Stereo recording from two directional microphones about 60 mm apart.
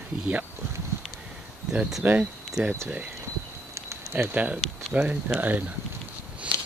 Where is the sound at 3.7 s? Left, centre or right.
Right.